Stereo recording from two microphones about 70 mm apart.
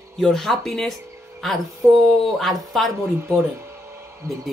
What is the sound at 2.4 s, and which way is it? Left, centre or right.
Speech, centre.